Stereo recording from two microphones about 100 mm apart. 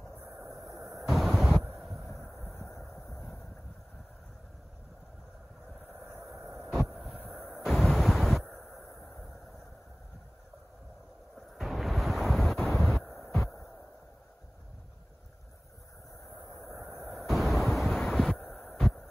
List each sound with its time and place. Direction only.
0.7 s vehicle: centre (ahead or behind)
1.7 s a sound: centre (ahead or behind)
2.4 s vehicle: 20° left (ahead or behind)
2.7 s vehicle: centre (ahead or behind)
3.1 s vehicle: 15° left (ahead or behind)
6.2 s a sound: centre (ahead or behind)
11.3 s waves: centre (ahead or behind)
16.5 s vehicle: centre (ahead or behind)
17.0 s a sound: centre (ahead or behind)